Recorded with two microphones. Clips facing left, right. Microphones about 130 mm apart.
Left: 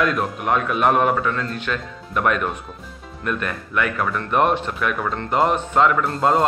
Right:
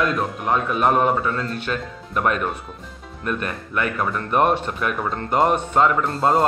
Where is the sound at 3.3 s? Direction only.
35° right (ahead or behind).